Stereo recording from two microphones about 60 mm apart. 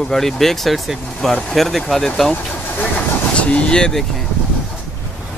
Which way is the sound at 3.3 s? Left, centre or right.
Left.